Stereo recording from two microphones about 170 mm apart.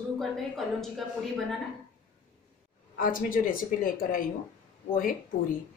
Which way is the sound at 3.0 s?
55° left (ahead or behind).